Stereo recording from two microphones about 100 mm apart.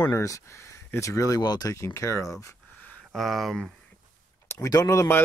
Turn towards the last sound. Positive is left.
turn(degrees=25)  # may be behind; listen again after turning